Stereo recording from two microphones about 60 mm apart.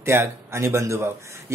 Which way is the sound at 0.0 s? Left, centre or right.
Right.